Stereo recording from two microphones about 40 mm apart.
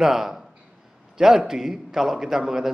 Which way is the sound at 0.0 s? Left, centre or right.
Centre.